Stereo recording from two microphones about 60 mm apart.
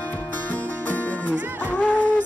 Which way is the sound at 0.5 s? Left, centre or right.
Left.